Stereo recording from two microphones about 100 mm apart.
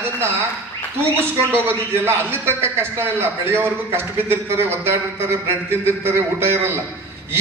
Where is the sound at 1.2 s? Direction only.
25° right (ahead or behind).